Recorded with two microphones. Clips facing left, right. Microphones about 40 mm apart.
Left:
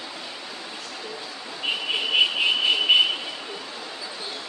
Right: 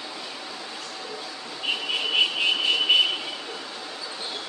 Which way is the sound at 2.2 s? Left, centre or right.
Centre.